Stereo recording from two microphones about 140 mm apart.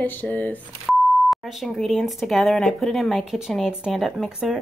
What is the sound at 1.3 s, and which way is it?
Speech, centre (ahead or behind).